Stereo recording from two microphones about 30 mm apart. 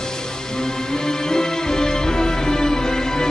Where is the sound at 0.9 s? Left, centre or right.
Left.